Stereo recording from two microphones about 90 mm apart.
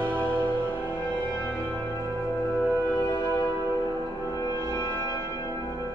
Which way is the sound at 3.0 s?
40° left (ahead or behind).